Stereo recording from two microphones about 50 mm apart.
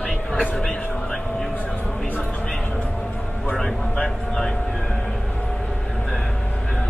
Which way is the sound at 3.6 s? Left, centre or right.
Centre.